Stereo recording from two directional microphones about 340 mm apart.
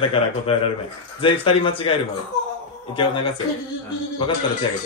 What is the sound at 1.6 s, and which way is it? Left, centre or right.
A man's voice, centre.